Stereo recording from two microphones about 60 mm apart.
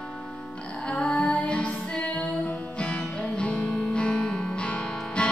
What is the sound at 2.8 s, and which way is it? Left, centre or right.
Music, left.